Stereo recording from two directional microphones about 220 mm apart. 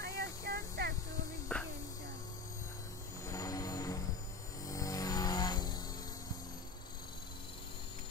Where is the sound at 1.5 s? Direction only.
5° left (ahead or behind).